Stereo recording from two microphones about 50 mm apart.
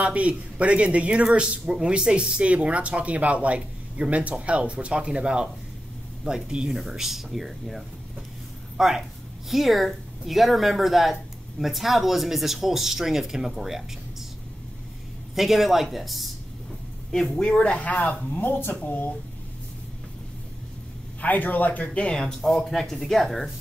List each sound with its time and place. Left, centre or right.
0.0 s speech: right
6.7 s speech: centre
15.3 s speech: centre
17.4 s speech: left
21.2 s speech: left; by 22.3 s centre
22.7 s speech: centre